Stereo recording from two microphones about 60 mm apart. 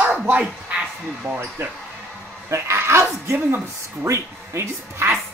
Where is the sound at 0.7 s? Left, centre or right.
Right.